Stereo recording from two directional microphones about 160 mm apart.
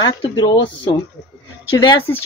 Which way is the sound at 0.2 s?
25° left (ahead or behind).